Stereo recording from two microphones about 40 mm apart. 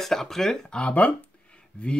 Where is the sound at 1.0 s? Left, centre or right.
Left.